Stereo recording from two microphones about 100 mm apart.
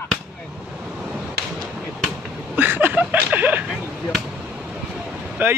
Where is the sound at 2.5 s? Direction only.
20° right (ahead or behind).